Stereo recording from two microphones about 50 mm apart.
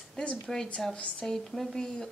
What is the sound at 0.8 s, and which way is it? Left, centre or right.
Speech, centre.